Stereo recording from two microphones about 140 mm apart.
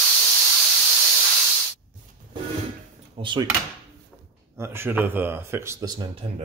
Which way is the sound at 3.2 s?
35° right (ahead or behind).